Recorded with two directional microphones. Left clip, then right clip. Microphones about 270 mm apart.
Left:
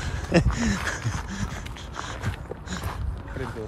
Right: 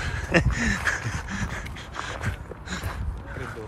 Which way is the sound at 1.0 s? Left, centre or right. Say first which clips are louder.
Right 1 dB; centre.